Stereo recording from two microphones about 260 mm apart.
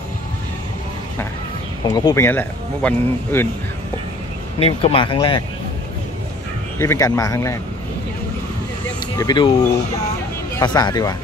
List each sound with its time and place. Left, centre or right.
1.9 s speech: centre
4.6 s speech: left
6.8 s speech: centre
9.1 s speech: centre
10.5 s speech: centre